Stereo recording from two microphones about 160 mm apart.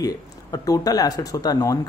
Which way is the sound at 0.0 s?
25° left (ahead or behind).